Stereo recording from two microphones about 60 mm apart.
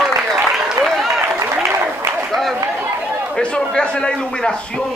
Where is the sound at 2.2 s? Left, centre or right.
Centre.